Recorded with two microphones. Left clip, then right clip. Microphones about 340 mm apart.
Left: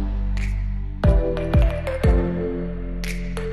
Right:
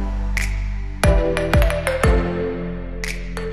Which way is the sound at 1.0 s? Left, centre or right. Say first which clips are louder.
Right 5 dB; right.